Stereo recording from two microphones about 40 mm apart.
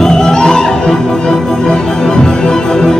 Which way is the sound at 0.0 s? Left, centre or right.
Centre.